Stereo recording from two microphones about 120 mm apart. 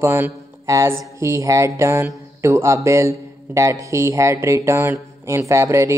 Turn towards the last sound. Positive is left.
turn(degrees=-25)  # may be behind; listen again after turning